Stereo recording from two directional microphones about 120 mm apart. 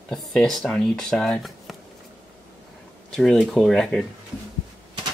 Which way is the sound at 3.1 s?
5° left (ahead or behind).